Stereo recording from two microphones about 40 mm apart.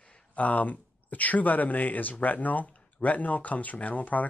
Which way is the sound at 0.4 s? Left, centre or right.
Left.